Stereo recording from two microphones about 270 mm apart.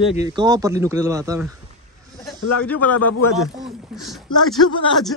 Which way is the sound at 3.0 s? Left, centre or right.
Left.